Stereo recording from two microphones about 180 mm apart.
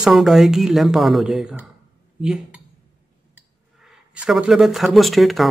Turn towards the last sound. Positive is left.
turn(degrees=0)  # may be behind; listen again after turning